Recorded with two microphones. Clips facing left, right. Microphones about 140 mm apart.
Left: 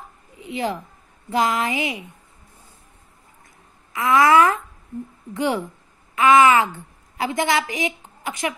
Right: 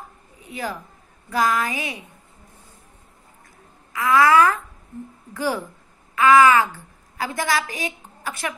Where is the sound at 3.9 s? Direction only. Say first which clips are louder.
Left 1 dB; 25° left (ahead or behind).